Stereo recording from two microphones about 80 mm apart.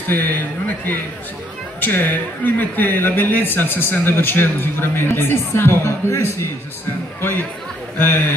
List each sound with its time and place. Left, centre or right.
0.1 s speech: left